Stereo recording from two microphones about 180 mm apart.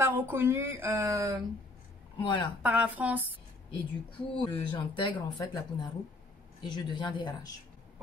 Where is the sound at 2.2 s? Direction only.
25° left (ahead or behind).